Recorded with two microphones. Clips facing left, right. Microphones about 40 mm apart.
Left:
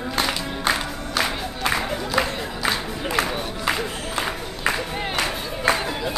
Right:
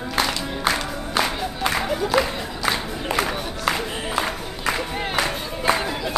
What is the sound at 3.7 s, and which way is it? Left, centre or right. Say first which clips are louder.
Music: right 2 dB; centre.